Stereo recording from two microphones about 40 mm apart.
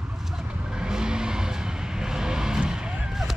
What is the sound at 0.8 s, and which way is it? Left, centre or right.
Vehicle, centre.